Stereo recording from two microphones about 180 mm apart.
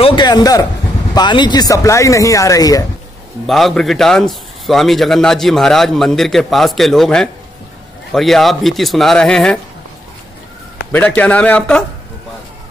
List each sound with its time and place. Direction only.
0.0 s a sound: 25° left (ahead or behind)
1.1 s speech: 25° left (ahead or behind)
3.4 s a man's voice: centre (ahead or behind)
10.9 s a man's voice: 10° left (ahead or behind)